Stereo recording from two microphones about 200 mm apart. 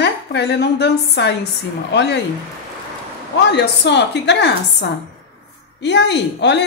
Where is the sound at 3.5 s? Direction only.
60° left (ahead or behind).